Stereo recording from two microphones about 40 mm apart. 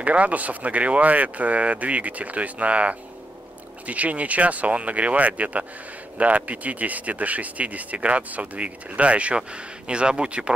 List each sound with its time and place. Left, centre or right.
0.0 s speech: right